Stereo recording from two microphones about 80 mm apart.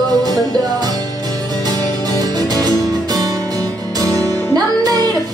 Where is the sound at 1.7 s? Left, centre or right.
Right.